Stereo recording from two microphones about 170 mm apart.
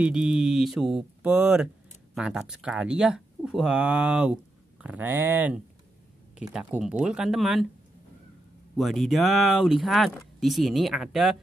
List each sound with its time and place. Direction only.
0.0 s speech: 5° right (ahead or behind)
8.7 s speech: centre (ahead or behind)